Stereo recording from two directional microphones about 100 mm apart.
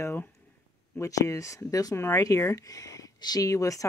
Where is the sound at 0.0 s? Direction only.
25° left (ahead or behind).